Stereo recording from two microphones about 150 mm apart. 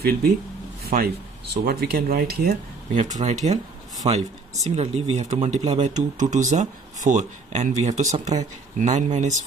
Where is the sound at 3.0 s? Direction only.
55° right (ahead or behind).